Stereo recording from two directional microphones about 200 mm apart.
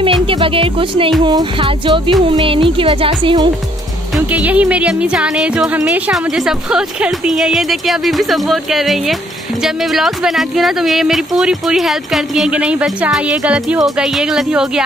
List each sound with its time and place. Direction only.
0.3 s speech: 25° right (ahead or behind)
4.3 s speech: 5° right (ahead or behind)